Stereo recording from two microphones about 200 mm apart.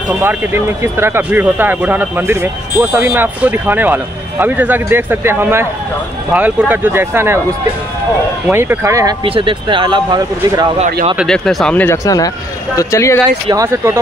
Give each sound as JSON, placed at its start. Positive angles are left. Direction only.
{"t": 0.9, "sound": "speech", "side_deg": -10}
{"t": 8.5, "sound": "speech", "side_deg": -10}
{"t": 9.2, "sound": "speech", "side_deg": -25}
{"t": 11.1, "sound": "speech", "side_deg": 5}
{"t": 13.5, "sound": "speech", "side_deg": -15}